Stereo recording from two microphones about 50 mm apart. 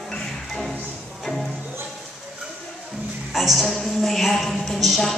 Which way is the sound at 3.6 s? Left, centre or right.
Centre.